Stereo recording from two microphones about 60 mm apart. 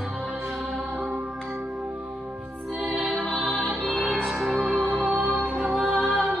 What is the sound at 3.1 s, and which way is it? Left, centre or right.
Music, left.